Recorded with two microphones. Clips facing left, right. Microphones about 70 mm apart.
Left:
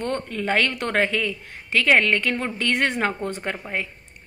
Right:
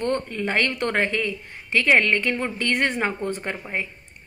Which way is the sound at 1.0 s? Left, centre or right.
Left.